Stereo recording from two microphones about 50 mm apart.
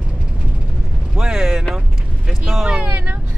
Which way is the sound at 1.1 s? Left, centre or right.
Centre.